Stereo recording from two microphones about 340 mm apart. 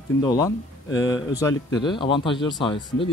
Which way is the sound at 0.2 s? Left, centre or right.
Centre.